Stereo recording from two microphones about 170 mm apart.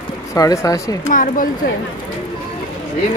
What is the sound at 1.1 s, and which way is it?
Speech, 50° left (ahead or behind).